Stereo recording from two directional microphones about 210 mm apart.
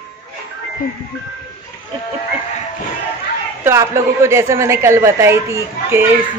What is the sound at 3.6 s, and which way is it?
A woman's voice, 15° right (ahead or behind).